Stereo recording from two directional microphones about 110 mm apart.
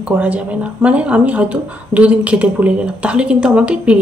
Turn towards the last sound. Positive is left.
turn(degrees=-10)  # may be behind; listen again after turning